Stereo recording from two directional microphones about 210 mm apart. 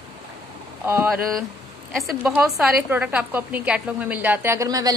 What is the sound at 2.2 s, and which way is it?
A woman's voice, 5° right (ahead or behind).